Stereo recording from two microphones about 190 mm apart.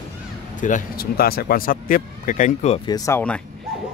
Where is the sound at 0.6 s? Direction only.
45° left (ahead or behind).